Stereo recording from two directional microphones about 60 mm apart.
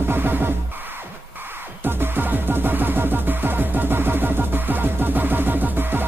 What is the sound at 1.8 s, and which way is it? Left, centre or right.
Music, right.